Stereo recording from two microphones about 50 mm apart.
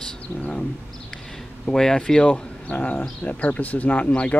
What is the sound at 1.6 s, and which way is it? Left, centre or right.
Speech, centre.